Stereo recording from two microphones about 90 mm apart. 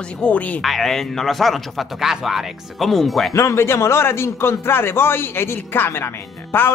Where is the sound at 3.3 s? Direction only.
30° left (ahead or behind).